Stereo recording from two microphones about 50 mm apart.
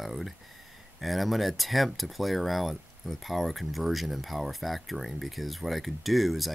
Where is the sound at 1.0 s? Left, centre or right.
Centre.